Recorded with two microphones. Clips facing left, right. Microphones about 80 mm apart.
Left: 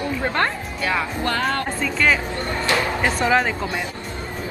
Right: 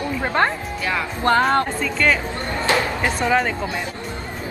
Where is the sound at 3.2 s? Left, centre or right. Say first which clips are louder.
Even; centre.